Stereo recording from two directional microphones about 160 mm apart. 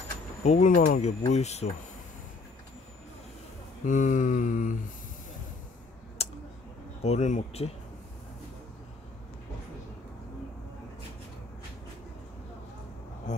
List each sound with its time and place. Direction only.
0.4 s mantra: 45° left (ahead or behind)
3.8 s mantra: 55° left (ahead or behind)
6.2 s a sound: 40° left (ahead or behind)
7.0 s speech: 45° left (ahead or behind)